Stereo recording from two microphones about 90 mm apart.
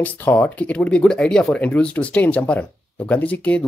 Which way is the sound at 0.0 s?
15° left (ahead or behind).